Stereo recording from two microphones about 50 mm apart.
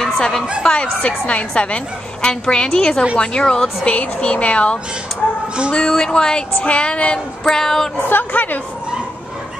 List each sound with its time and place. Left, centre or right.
0.0 s a sound: centre
0.7 s a woman's voice: centre
5.9 s a woman's voice: centre
7.4 s a woman's voice: centre
8.1 s a woman's voice: left